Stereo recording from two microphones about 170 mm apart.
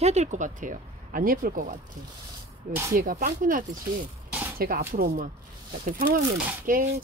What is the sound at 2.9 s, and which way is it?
Speech, 55° right (ahead or behind).